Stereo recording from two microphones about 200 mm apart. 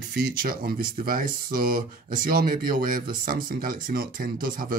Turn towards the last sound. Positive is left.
turn(degrees=-45)  # may be behind; listen again after turning